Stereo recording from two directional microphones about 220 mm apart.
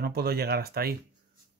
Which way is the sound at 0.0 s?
45° right (ahead or behind).